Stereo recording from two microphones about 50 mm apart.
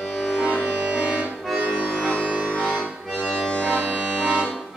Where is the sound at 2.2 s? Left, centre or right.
Right.